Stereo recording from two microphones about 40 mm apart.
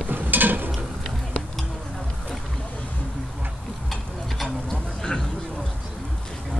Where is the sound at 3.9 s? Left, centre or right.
Centre.